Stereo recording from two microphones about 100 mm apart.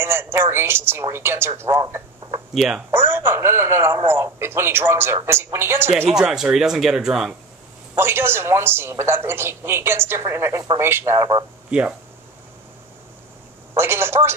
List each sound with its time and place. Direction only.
0.0 s a man's voice: 25° right (ahead or behind)
2.5 s speech: 5° right (ahead or behind)
2.9 s a man's voice: 25° right (ahead or behind)
6.0 s speech: 5° right (ahead or behind)
7.9 s a man's voice: 25° right (ahead or behind)
13.7 s a man's voice: 25° right (ahead or behind)